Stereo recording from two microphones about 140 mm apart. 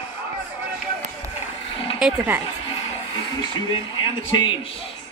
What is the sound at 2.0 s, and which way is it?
Speech, 10° right (ahead or behind).